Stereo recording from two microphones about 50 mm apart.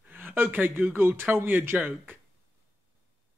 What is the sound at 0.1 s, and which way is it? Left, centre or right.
A man's voice, right.